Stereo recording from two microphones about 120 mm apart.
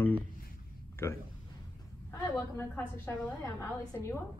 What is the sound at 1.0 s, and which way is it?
A woman's voice, 20° left (ahead or behind).